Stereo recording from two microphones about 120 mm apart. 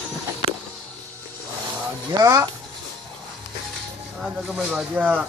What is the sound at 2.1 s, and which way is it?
Speech, 30° right (ahead or behind).